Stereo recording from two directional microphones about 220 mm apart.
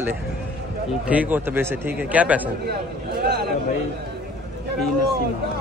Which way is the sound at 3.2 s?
45° right (ahead or behind).